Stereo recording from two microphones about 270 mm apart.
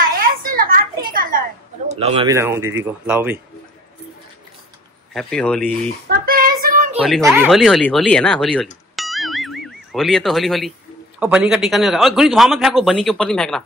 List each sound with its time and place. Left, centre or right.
0.2 s a sound: right
1.9 s a man's voice: right
2.3 s speech: centre
5.1 s a man's voice: centre
6.0 s child singing: right
6.6 s a sound: right
7.4 s a man's voice: centre
8.9 s clang: centre
11.1 s a man's voice: centre